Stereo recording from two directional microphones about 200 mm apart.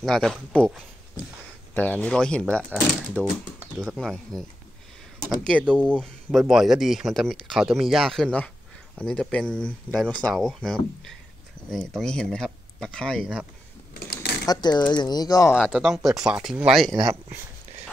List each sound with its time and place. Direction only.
0.0 s speech: centre (ahead or behind)
5.9 s speech: centre (ahead or behind)
13.9 s a sound: 55° left (ahead or behind)
14.4 s speech: 20° left (ahead or behind)
15.7 s speech: centre (ahead or behind)
16.9 s speech: 15° right (ahead or behind)